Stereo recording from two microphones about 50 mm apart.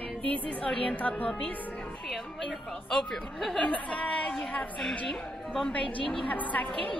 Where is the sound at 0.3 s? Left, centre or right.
Left.